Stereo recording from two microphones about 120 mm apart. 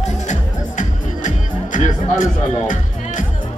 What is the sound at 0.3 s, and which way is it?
Music, 90° left.